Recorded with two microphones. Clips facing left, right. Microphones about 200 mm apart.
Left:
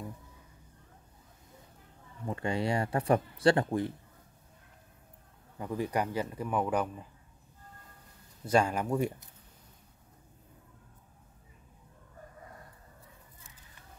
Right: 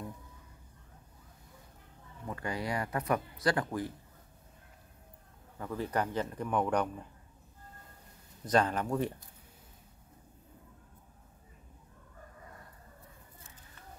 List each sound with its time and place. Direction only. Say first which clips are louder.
2.2 s speech: left 5 dB; 25° left (ahead or behind)
5.6 s speech: left 2 dB; 15° left (ahead or behind)
8.5 s speech: left 1 dB; 10° left (ahead or behind)